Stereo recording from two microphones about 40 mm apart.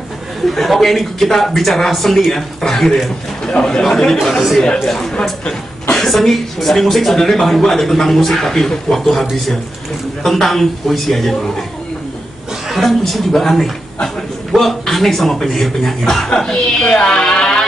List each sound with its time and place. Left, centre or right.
0.6 s speech: centre
4.2 s speech: centre
12.6 s speech: centre; by 17.2 s left
17.2 s music: centre